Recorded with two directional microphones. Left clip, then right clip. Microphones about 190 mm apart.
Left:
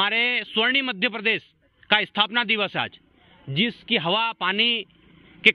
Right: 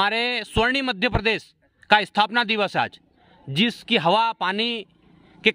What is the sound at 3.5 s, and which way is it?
Speech, 55° right (ahead or behind).